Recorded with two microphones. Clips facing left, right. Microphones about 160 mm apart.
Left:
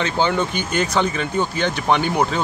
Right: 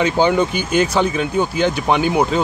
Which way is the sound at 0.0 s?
10° right (ahead or behind).